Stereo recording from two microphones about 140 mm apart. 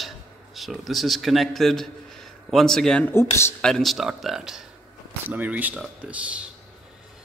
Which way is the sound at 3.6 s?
Centre (ahead or behind).